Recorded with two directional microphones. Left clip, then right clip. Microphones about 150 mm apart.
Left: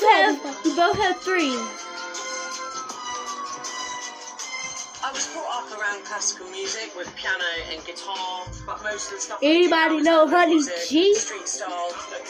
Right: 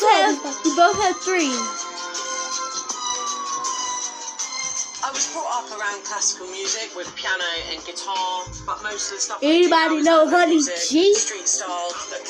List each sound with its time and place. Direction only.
0.0 s music: centre (ahead or behind)
0.7 s speech: centre (ahead or behind)
2.1 s music: 35° left (ahead or behind)
7.2 s music: 35° left (ahead or behind)
9.4 s speech: 5° left (ahead or behind)